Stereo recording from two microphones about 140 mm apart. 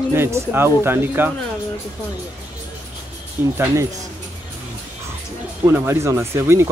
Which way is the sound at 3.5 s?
15° right (ahead or behind).